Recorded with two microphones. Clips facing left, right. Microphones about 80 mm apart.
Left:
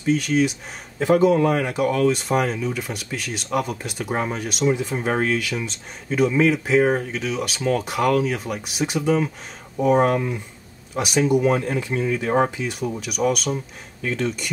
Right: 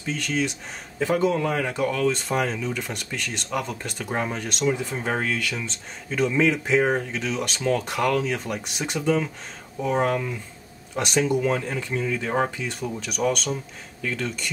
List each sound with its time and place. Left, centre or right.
0.0 s speech: centre
0.9 s speech: centre